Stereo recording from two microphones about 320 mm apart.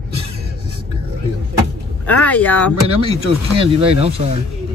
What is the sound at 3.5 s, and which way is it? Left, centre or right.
Speech, centre.